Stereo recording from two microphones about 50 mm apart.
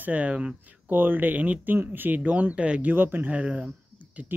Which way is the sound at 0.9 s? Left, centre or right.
Right.